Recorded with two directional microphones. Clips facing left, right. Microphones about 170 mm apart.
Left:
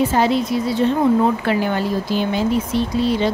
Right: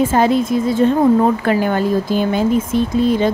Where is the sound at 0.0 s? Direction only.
50° right (ahead or behind).